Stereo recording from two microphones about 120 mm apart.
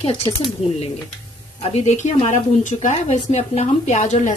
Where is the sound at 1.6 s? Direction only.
60° left (ahead or behind).